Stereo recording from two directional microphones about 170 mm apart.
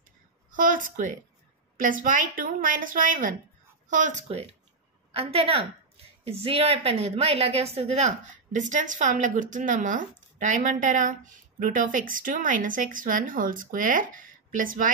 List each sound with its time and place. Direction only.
0.5 s a woman's voice: 50° right (ahead or behind)